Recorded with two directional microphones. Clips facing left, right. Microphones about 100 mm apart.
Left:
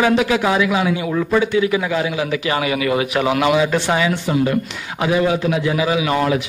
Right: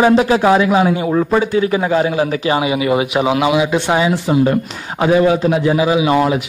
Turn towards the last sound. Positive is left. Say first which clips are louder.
# right 4 dB
turn(degrees=-25)  # may be behind; listen again after turning